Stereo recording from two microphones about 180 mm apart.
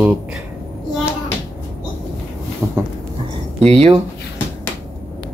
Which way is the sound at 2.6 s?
15° right (ahead or behind).